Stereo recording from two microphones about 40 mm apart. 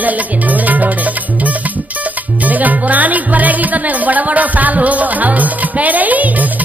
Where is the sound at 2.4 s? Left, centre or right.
Right.